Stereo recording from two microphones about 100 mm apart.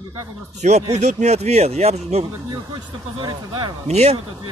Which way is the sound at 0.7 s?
90° right.